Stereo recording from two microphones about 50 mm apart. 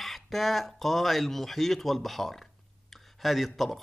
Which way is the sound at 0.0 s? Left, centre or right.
Centre.